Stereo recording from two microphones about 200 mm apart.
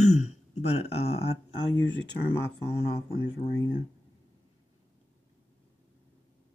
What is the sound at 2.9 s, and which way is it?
Speech, 30° left (ahead or behind).